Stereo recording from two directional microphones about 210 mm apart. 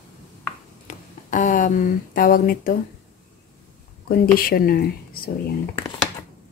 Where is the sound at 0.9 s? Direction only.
35° left (ahead or behind).